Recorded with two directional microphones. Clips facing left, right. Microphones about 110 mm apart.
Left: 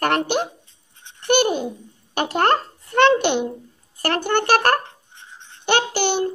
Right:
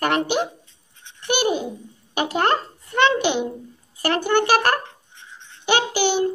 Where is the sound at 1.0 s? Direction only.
45° left (ahead or behind).